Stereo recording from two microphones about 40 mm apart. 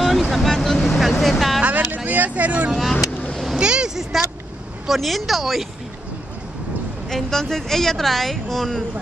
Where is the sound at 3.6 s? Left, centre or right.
Right.